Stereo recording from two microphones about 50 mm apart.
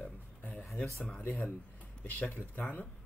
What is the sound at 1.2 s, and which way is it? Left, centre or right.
Speech, left.